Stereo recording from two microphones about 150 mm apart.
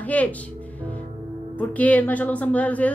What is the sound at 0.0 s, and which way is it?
Speech, 10° left (ahead or behind).